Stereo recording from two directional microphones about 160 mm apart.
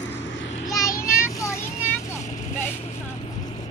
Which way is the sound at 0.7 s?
20° left (ahead or behind).